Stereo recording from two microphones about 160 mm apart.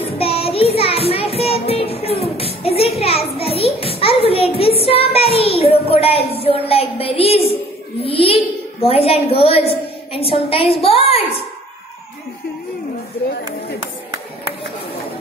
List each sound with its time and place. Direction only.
0.0 s child singing: 35° left (ahead or behind)
6.7 s a woman's voice: 35° left (ahead or behind)
8.0 s a sound: 35° left (ahead or behind)
8.8 s a woman's voice: 35° left (ahead or behind)